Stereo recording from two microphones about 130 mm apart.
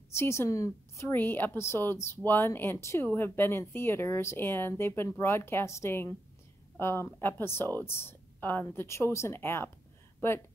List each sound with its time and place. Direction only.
0.1 s a woman's voice: 20° left (ahead or behind)